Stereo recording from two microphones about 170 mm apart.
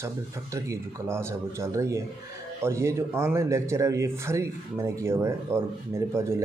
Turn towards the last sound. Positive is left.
turn(degrees=-15)  # may be behind; listen again after turning